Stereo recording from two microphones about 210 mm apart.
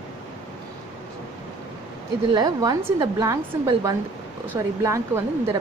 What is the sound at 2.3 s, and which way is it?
A woman's voice, 20° right (ahead or behind).